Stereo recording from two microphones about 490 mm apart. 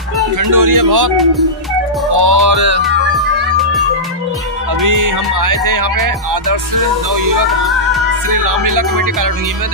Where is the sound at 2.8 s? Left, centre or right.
Centre.